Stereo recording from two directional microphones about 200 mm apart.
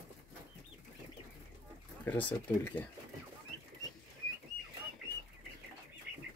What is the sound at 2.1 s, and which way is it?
Speech, 10° left (ahead or behind).